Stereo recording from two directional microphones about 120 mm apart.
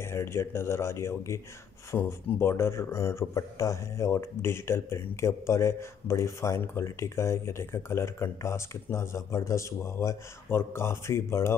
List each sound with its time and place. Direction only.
0.0 s speech: 20° left (ahead or behind)